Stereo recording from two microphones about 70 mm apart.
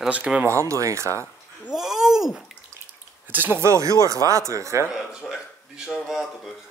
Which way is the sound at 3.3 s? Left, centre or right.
Right.